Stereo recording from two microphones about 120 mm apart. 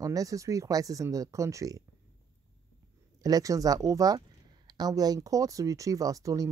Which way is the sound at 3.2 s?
30° right (ahead or behind).